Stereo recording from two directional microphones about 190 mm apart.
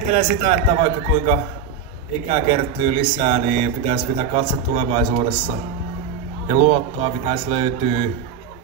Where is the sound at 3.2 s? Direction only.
35° right (ahead or behind).